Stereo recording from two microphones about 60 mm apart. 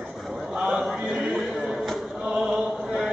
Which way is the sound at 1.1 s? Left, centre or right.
Right.